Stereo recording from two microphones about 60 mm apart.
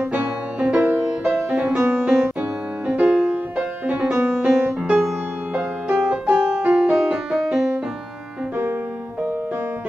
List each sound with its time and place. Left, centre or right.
0.1 s music: right
2.0 s piano: centre
2.9 s music: right
4.1 s music: right
4.4 s music: centre
6.0 s piano: centre
6.6 s music: centre